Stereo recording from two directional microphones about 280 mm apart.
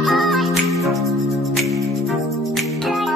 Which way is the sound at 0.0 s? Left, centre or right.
Centre.